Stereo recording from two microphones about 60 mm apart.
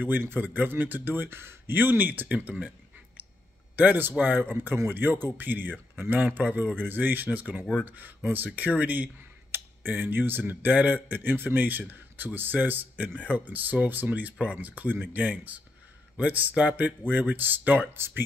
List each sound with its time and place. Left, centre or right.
0.0 s speech: right
3.7 s speech: right